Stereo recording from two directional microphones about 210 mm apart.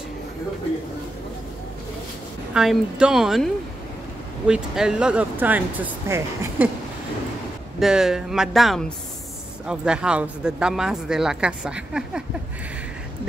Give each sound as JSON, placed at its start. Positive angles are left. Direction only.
{"t": 2.5, "sound": "speech", "side_deg": 0}
{"t": 4.5, "sound": "speech", "side_deg": -5}
{"t": 7.8, "sound": "speech", "side_deg": 0}